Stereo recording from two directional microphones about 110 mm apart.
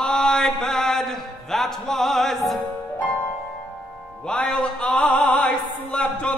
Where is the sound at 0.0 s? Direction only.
5° left (ahead or behind).